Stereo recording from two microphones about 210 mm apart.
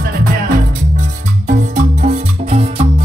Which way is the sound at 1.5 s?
35° right (ahead or behind).